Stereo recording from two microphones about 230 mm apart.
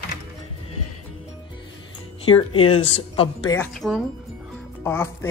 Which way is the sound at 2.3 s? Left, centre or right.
Left.